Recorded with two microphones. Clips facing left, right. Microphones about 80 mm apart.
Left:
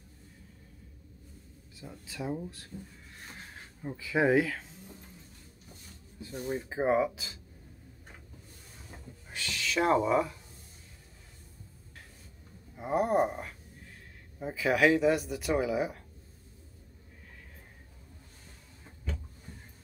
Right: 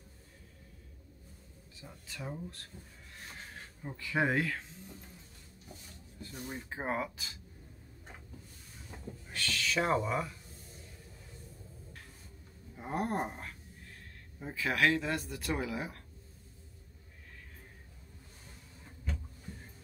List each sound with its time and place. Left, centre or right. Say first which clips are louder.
1.8 s speech: left 6 dB; centre
3.9 s speech: left 6 dB; centre
6.4 s speech: left 9 dB; centre
9.3 s a sound: right 1 dB; centre
9.7 s speech: left 6 dB; centre
12.7 s speech: left 7 dB; centre